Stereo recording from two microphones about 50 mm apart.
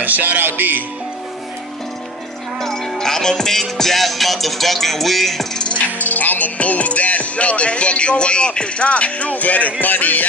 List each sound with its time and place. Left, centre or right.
0.0 s music: right
2.6 s music: centre
5.6 s music: left
5.9 s music: left